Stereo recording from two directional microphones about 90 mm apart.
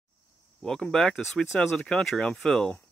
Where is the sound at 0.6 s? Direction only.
5° left (ahead or behind).